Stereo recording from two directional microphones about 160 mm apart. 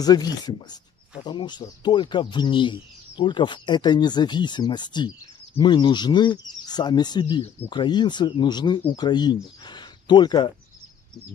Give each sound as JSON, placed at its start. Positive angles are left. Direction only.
{"t": 0.0, "sound": "speech", "side_deg": 25}